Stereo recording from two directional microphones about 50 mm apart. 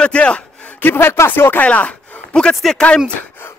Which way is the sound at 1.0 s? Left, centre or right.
Left.